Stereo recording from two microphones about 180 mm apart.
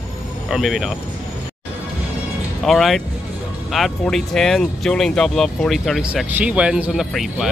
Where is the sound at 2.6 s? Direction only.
Centre (ahead or behind).